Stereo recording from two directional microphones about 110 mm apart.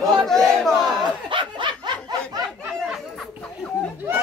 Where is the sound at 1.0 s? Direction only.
45° right (ahead or behind).